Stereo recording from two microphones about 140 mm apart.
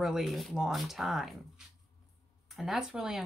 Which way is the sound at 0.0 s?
Centre (ahead or behind).